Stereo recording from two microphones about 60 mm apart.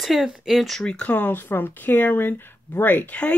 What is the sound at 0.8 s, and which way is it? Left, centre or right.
Speech, centre.